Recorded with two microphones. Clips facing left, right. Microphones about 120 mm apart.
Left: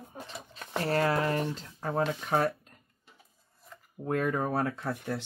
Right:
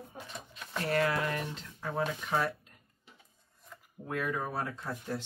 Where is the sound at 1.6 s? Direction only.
45° left (ahead or behind).